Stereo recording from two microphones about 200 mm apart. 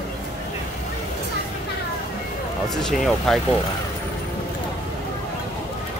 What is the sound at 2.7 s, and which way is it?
Speech, centre (ahead or behind).